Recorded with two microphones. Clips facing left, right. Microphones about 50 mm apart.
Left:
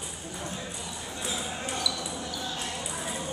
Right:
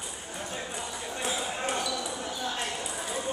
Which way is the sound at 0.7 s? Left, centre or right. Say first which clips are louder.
Right 3 dB; right.